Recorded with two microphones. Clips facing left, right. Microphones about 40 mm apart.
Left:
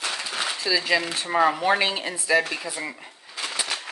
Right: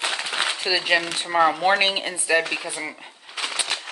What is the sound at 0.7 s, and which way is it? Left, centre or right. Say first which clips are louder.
Speech: even; right.